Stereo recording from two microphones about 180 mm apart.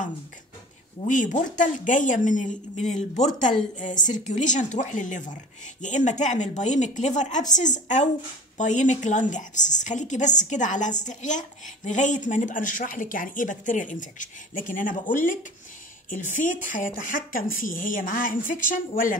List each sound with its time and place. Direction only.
1.0 s speech: 45° left (ahead or behind)